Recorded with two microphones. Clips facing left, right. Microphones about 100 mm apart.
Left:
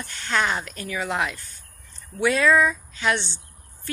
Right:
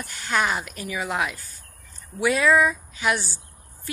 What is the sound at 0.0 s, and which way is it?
A woman's voice, 10° right (ahead or behind).